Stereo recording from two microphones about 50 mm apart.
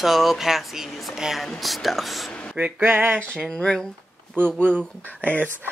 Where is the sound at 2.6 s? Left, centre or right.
Right.